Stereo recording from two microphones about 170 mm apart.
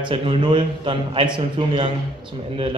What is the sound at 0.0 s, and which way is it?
A man's voice, 30° right (ahead or behind).